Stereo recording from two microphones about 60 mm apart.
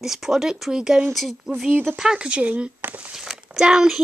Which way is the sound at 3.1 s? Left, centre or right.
Centre.